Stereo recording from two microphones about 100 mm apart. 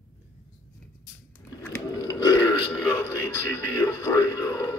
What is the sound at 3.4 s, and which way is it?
Television, 25° left (ahead or behind).